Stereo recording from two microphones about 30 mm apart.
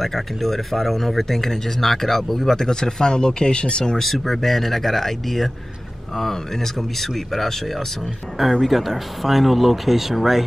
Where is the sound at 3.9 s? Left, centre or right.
Centre.